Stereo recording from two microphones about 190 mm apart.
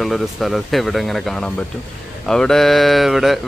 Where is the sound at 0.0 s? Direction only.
Centre (ahead or behind).